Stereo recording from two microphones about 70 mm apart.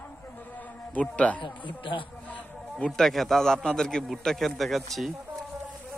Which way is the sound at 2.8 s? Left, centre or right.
Centre.